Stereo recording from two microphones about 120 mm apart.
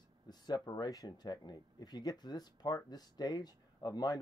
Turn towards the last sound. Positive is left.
turn(degrees=35)  # may be behind; listen again after turning